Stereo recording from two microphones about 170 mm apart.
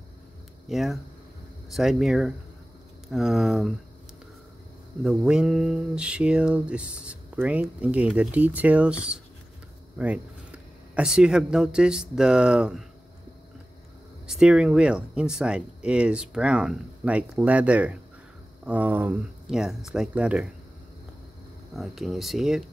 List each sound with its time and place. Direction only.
0.7 s speech: centre (ahead or behind)
5.0 s a sound: 5° right (ahead or behind)
9.9 s speech: 5° right (ahead or behind)
14.2 s speech: 5° right (ahead or behind)
21.7 s speech: centre (ahead or behind)